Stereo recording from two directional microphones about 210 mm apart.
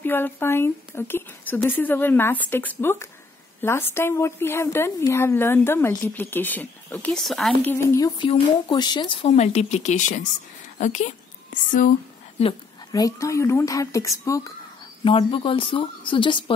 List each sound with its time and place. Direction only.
0.0 s a woman's voice: 10° left (ahead or behind); by 11.9 s 40° left (ahead or behind)
12.4 s a woman's voice: 20° left (ahead or behind)